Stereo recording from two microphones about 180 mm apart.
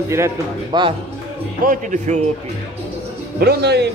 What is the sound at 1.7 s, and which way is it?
Speech, 40° right (ahead or behind).